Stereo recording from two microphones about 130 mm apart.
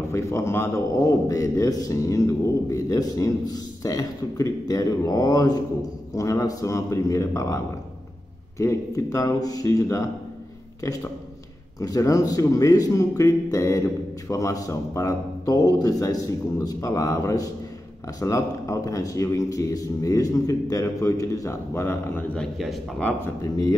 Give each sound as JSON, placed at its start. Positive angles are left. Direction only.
{"t": 0.1, "sound": "speech", "side_deg": 20}
{"t": 11.8, "sound": "speech", "side_deg": 25}
{"t": 22.4, "sound": "a man's voice", "side_deg": 0}
{"t": 23.2, "sound": "speech", "side_deg": 25}